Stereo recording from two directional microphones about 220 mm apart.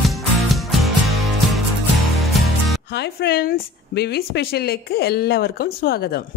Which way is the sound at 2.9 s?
50° left (ahead or behind).